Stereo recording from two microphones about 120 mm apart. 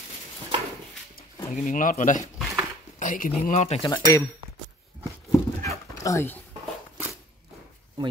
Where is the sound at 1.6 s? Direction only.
90° left; by 3.8 s 70° left (ahead or behind).